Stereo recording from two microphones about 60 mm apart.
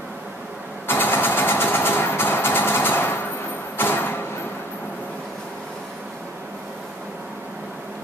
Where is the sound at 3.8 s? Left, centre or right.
Left.